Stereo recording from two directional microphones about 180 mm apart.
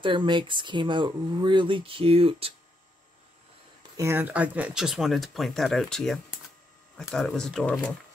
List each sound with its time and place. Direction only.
0.0 s speech: 25° right (ahead or behind)
3.9 s speech: 15° right (ahead or behind); by 7.9 s 5° left (ahead or behind)